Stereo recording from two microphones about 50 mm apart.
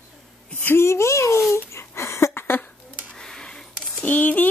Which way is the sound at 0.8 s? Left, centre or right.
Left.